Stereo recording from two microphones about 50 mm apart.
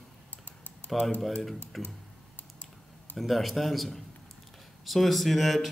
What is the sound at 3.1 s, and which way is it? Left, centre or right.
A man's voice, centre.